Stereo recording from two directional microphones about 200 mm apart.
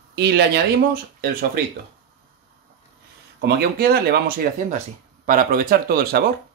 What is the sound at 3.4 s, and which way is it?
Speech, 50° right (ahead or behind).